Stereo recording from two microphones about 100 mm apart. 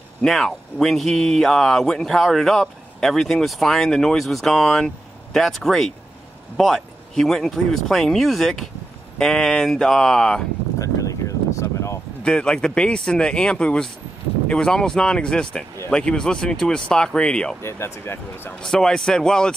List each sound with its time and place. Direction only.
0.2 s speech: 5° left (ahead or behind)
10.8 s a sound: 35° left (ahead or behind)
12.2 s speech: 10° left (ahead or behind)
17.6 s speech: 25° left (ahead or behind)
18.6 s speech: 5° left (ahead or behind)